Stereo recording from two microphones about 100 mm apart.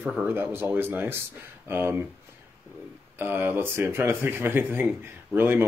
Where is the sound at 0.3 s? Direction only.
20° right (ahead or behind).